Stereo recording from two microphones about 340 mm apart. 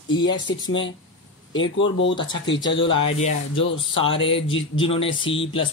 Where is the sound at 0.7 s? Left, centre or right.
Left.